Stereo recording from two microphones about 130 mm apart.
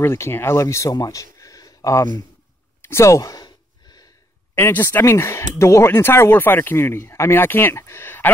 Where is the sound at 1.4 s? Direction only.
25° left (ahead or behind).